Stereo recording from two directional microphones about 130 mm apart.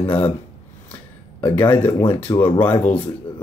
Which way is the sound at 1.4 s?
15° left (ahead or behind).